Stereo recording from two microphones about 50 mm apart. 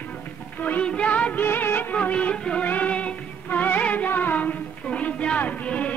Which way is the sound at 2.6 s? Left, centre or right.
Left.